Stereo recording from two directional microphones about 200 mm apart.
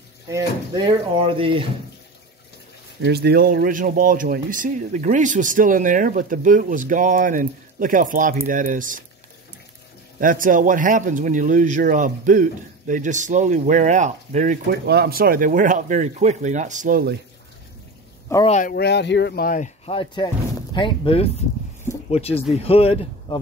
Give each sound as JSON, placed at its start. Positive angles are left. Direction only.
{"t": 0.3, "sound": "speech", "side_deg": -15}
{"t": 3.0, "sound": "speech", "side_deg": -55}
{"t": 10.2, "sound": "speech", "side_deg": -40}
{"t": 14.7, "sound": "speech", "side_deg": -50}
{"t": 18.5, "sound": "speech", "side_deg": 45}
{"t": 19.9, "sound": "a man's voice", "side_deg": 25}